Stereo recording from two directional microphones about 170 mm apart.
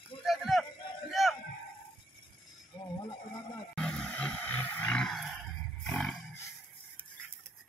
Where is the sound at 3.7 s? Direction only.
5° left (ahead or behind).